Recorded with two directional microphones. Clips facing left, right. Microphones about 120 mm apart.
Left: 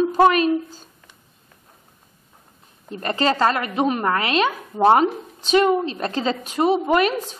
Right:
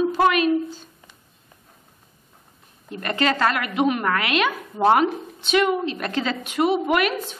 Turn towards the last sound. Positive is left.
turn(degrees=30)  # may be behind; listen again after turning